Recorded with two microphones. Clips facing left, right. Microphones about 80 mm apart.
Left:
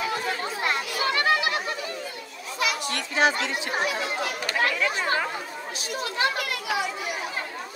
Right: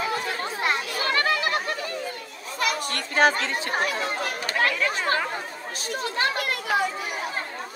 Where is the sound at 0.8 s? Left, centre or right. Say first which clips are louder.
Even; right.